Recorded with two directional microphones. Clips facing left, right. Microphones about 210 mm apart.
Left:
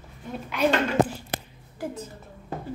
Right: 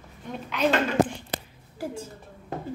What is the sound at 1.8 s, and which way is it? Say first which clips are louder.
Speech: even; 10° right (ahead or behind).